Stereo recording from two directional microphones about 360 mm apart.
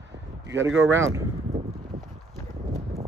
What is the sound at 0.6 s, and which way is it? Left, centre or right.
Speech, right.